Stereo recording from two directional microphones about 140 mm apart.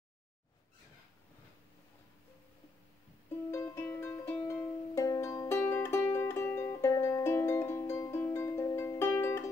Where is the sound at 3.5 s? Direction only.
15° left (ahead or behind).